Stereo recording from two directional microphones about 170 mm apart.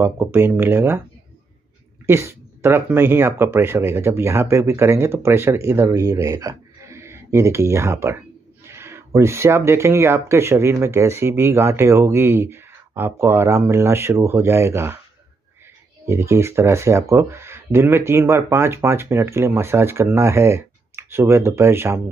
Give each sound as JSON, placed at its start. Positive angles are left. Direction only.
{"t": 0.0, "sound": "speech", "side_deg": -15}
{"t": 2.0, "sound": "speech", "side_deg": -15}
{"t": 16.1, "sound": "speech", "side_deg": -15}